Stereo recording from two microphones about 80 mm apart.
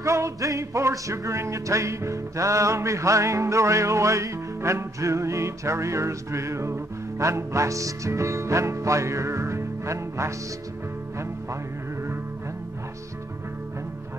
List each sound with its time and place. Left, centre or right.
0.0 s music: right